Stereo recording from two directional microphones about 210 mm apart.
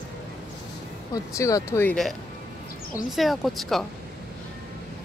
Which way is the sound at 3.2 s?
Centre (ahead or behind).